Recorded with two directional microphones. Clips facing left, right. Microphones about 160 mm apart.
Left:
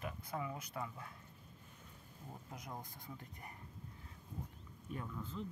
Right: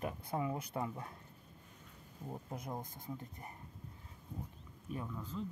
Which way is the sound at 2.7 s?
25° right (ahead or behind).